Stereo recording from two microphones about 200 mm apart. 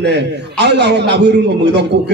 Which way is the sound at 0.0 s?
60° right (ahead or behind).